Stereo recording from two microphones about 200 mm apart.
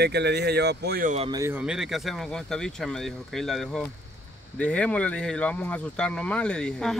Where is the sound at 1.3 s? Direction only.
15° right (ahead or behind).